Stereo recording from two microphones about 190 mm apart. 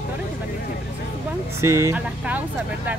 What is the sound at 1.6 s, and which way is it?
Speech, 15° right (ahead or behind).